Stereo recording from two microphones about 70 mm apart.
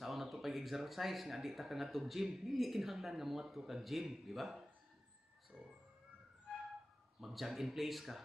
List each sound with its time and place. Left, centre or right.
0.0 s speech: centre
5.5 s a sound: centre
7.2 s speech: centre